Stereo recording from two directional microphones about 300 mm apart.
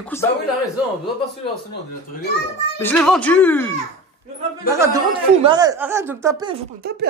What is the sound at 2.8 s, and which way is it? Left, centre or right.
Speech, centre.